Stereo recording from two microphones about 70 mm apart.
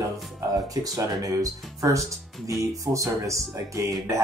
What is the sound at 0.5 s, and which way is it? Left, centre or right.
Speech, right.